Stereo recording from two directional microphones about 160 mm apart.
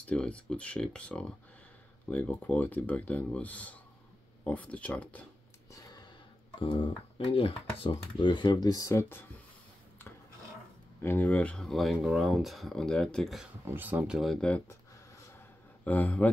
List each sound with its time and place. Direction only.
0.0 s speech: 5° left (ahead or behind)
5.7 s a sound: 20° left (ahead or behind)
6.6 s speech: 35° left (ahead or behind)
11.0 s speech: 15° left (ahead or behind)
13.7 s speech: 10° right (ahead or behind); by 14.8 s 10° left (ahead or behind)
15.8 s speech: 10° left (ahead or behind)